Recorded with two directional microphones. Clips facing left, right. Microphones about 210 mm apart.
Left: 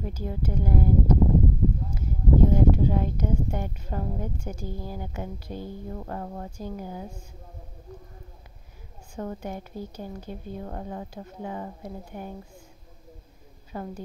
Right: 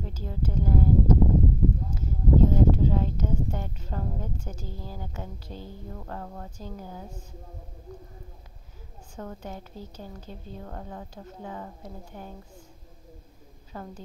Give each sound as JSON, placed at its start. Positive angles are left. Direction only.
{"t": 0.0, "sound": "a woman's voice", "side_deg": 10}
{"t": 9.1, "sound": "a woman's voice", "side_deg": 10}
{"t": 13.7, "sound": "a woman's voice", "side_deg": 10}